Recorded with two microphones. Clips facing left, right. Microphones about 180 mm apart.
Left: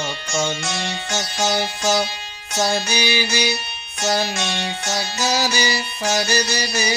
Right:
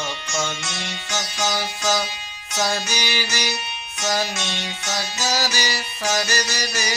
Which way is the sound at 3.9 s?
30° left (ahead or behind).